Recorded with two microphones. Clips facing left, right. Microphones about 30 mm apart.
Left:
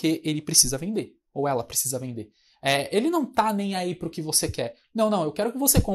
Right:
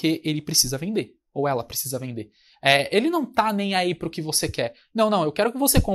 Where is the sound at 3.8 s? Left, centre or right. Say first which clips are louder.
Right 5 dB; right.